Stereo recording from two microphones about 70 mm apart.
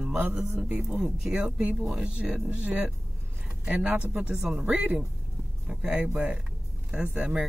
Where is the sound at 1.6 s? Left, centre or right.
Centre.